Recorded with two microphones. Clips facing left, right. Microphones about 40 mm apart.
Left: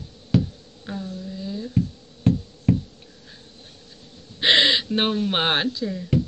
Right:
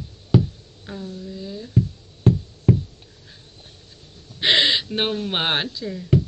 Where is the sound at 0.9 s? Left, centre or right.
Centre.